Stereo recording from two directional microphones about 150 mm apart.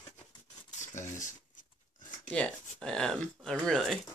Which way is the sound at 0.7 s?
55° left (ahead or behind).